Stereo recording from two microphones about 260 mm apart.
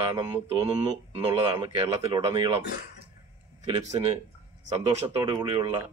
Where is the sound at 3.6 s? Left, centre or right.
Centre.